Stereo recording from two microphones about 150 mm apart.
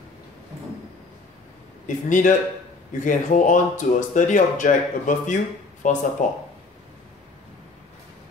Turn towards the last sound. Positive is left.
turn(degrees=55)  # may be behind; listen again after turning